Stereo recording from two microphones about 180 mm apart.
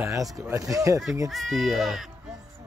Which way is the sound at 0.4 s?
15° right (ahead or behind).